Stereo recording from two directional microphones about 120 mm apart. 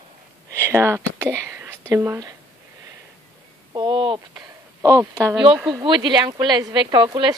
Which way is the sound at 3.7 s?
45° right (ahead or behind).